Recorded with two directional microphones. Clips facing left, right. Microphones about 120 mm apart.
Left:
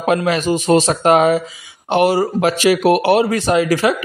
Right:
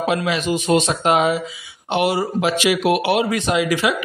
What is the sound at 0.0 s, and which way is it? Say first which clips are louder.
Speech: left 4 dB; 45° left (ahead or behind).